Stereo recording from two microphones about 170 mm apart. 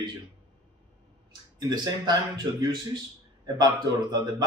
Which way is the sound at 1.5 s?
25° right (ahead or behind).